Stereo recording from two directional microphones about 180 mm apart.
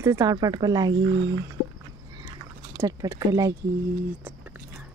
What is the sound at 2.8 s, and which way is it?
Speech, 20° right (ahead or behind).